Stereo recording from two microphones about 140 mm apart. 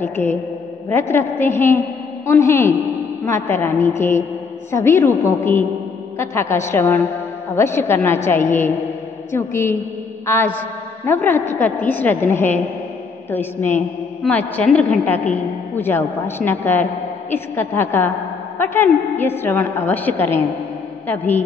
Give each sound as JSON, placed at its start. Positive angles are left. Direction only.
{"t": 0.0, "sound": "a woman's voice", "side_deg": 15}